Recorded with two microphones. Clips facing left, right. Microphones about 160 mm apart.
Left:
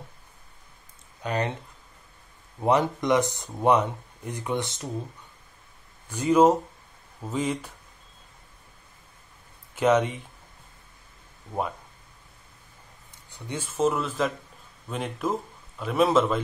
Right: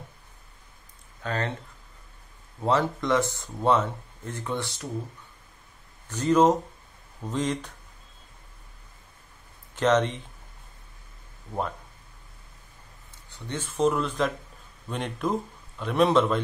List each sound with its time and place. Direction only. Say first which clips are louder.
1.2 s speech: left 2 dB; 15° left (ahead or behind)
2.6 s speech: left 2 dB; 15° left (ahead or behind)
6.0 s speech: left 1 dB; 10° left (ahead or behind)
9.8 s speech: left 1 dB; 10° left (ahead or behind)
13.3 s speech: even; 10° left (ahead or behind)